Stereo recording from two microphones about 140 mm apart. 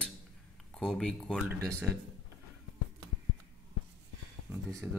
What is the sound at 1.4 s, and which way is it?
Speech, 20° right (ahead or behind).